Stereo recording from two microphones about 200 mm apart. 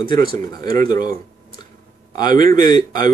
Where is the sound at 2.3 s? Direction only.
40° right (ahead or behind).